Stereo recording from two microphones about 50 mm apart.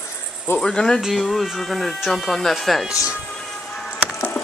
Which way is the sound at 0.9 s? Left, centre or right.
Centre.